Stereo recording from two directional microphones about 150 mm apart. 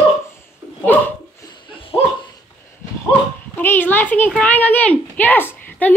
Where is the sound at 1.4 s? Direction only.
30° left (ahead or behind).